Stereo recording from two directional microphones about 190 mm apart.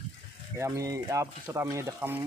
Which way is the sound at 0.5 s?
15° right (ahead or behind).